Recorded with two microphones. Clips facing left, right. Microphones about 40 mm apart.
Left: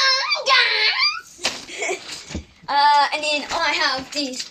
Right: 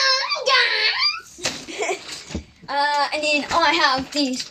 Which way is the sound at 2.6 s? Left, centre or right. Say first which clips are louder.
Left 5 dB; left.